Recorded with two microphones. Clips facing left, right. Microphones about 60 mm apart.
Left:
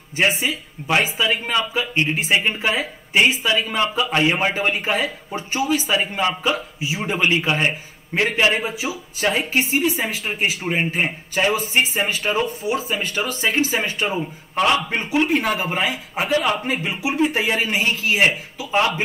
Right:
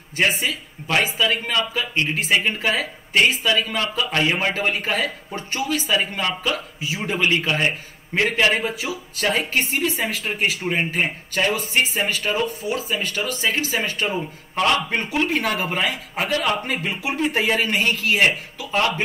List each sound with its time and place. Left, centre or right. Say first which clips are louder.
0.4 s speech: left 1 dB; centre
11.5 s speech: left 2 dB; left
12.6 s speech: left 2 dB; left
14.0 s speech: left 1 dB; centre